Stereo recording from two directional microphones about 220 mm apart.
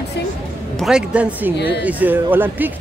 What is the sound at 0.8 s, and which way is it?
A woman's voice, 5° right (ahead or behind).